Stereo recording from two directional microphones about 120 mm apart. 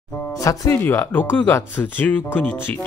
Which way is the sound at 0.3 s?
25° left (ahead or behind).